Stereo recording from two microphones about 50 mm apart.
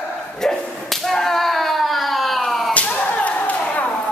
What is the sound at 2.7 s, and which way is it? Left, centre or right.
Whip, left.